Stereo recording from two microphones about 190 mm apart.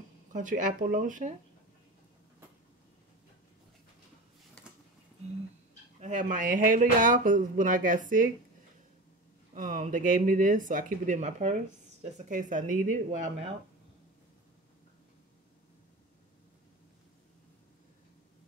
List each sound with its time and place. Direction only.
0.3 s speech: 40° right (ahead or behind)
5.9 s speech: 40° right (ahead or behind)
9.5 s speech: 40° right (ahead or behind)